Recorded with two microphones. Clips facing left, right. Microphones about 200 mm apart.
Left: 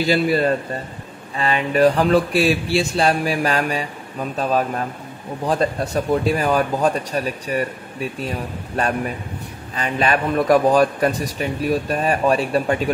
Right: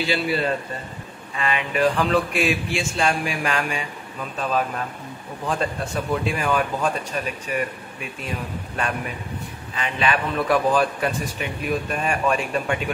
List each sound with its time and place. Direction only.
0.0 s a man's voice: 45° left (ahead or behind)
9.8 s speech: 40° left (ahead or behind)